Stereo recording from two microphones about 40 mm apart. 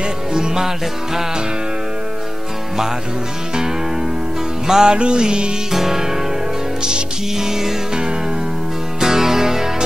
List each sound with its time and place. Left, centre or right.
0.3 s music: centre
3.5 s music: centre
4.9 s music: right
5.7 s music: centre